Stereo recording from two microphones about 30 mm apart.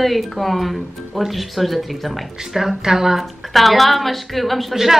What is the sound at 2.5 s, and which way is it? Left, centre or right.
Speech, centre.